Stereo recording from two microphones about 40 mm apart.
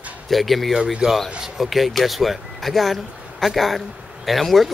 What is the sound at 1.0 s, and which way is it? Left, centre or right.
Speech, centre.